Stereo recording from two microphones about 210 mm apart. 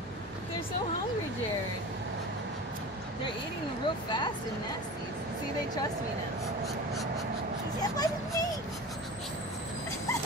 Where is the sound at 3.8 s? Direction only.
20° left (ahead or behind).